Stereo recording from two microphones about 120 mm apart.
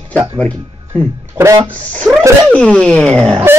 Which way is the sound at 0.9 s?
10° left (ahead or behind).